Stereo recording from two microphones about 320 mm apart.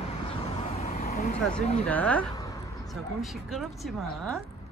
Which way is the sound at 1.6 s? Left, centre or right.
Centre.